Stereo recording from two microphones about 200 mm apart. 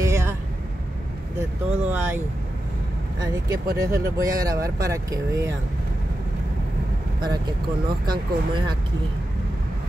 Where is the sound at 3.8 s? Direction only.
15° right (ahead or behind).